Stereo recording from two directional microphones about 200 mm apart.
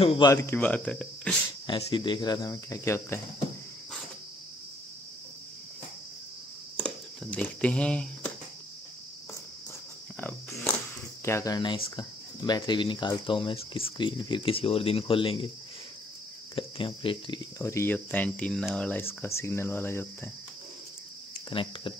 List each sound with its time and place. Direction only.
0.0 s speech: 30° left (ahead or behind)
0.3 s speech: 15° left (ahead or behind)
1.7 s speech: 25° left (ahead or behind)
6.8 s a sound: 5° left (ahead or behind)
10.1 s speech: 10° left (ahead or behind); by 15.5 s 25° left (ahead or behind)
16.5 s speech: 25° left (ahead or behind)
17.6 s speech: 15° left (ahead or behind)
21.5 s speech: 25° left (ahead or behind)